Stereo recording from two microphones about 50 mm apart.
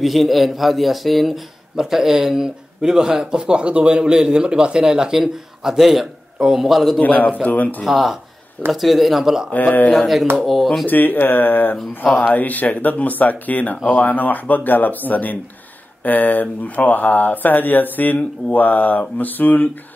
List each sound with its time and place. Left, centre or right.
0.0 s a man's voice: centre
7.0 s speech: left
7.8 s speech: centre
9.5 s speech: left
9.9 s speech: centre
10.9 s speech: left